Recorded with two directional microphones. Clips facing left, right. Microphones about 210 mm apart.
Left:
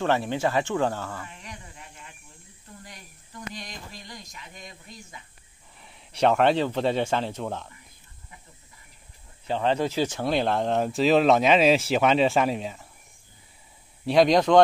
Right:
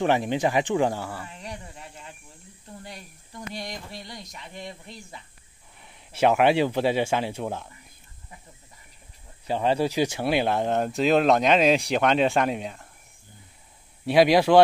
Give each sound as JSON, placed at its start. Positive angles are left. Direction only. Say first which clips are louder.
{"t": 0.0, "sound": "speech", "louder": "right 2 dB", "side_deg": -15}
{"t": 1.2, "sound": "a sound", "louder": "right 4 dB", "side_deg": -30}
{"t": 4.4, "sound": "speech", "louder": "right 6 dB", "side_deg": -30}
{"t": 5.8, "sound": "speech", "louder": "right 1 dB", "side_deg": 0}
{"t": 9.5, "sound": "speech", "louder": "right 1 dB", "side_deg": -10}
{"t": 14.0, "sound": "speech", "louder": "right 1 dB", "side_deg": -5}